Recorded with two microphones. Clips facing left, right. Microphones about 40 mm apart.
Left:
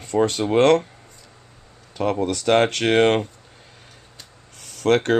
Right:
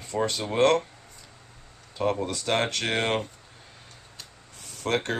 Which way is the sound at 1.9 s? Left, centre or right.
Left.